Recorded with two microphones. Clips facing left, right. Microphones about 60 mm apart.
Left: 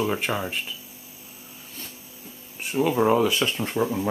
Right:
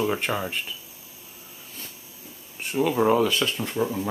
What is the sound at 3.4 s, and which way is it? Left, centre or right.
Speech, left.